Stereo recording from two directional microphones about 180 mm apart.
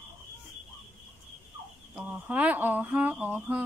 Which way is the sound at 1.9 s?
10° right (ahead or behind).